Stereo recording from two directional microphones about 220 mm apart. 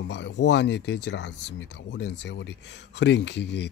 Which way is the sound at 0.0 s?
55° left (ahead or behind).